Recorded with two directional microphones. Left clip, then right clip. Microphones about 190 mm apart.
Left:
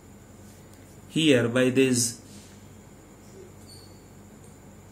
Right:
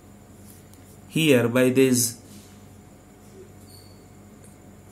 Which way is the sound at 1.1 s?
35° right (ahead or behind).